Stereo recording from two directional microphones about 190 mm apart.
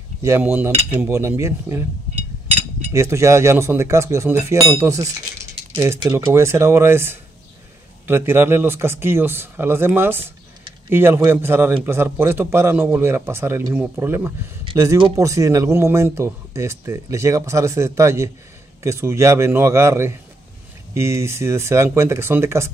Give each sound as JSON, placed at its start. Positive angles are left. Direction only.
{"t": 0.2, "sound": "speech", "side_deg": -10}
{"t": 2.9, "sound": "speech", "side_deg": -15}